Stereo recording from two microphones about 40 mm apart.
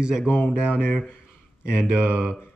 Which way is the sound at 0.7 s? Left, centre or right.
Left.